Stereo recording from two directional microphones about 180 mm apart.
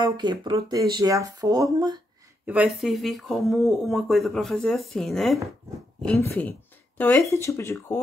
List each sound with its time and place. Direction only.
0.0 s speech: 25° right (ahead or behind)
2.4 s speech: 5° right (ahead or behind); by 8.0 s 15° left (ahead or behind)